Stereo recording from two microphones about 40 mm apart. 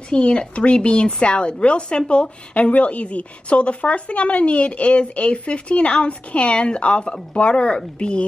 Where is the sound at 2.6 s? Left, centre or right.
Left.